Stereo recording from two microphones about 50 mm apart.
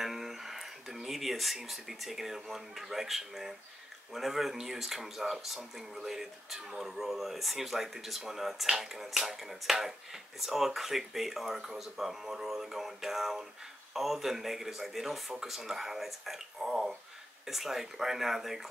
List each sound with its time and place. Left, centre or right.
0.0 s speech: centre
11.7 s a sound: centre
13.9 s speech: centre